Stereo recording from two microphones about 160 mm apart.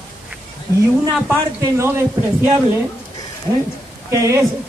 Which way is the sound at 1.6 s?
15° right (ahead or behind).